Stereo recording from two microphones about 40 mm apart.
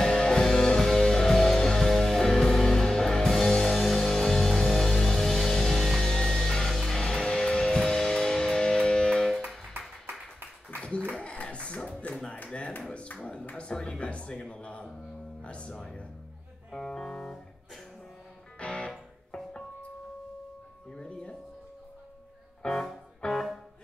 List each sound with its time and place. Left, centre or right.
0.0 s music: centre
6.0 s music: centre
11.1 s a sound: left
13.7 s speech: left
15.4 s music: left
15.8 s speech: left
18.6 s music: left
20.9 s music: left
22.6 s speech: left
23.2 s music: left